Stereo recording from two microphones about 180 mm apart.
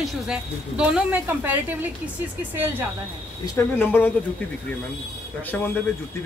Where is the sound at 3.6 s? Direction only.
10° left (ahead or behind).